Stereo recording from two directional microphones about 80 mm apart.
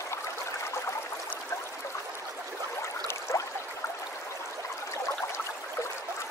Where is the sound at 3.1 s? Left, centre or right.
Left.